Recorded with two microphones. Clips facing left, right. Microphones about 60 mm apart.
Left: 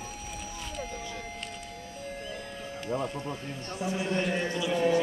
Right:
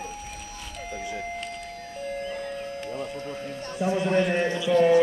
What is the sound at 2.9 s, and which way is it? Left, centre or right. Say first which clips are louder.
Music: left 1 dB; centre.